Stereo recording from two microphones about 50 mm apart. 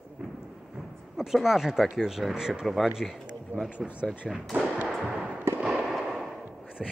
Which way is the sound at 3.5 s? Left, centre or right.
Right.